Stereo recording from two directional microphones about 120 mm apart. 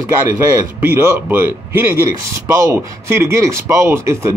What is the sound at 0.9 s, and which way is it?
A man's voice, 20° right (ahead or behind).